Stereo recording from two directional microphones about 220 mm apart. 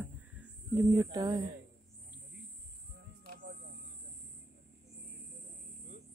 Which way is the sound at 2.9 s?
45° right (ahead or behind).